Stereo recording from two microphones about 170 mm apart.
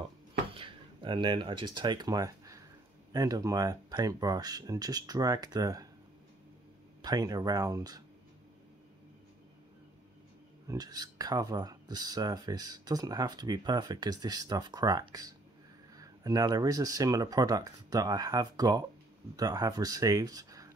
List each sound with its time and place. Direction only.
0.6 s speech: 30° right (ahead or behind)
7.0 s speech: 25° right (ahead or behind)
10.7 s speech: 20° right (ahead or behind)